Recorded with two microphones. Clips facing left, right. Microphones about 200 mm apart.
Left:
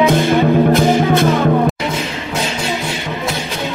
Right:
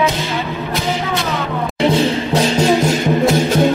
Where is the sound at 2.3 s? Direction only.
40° right (ahead or behind).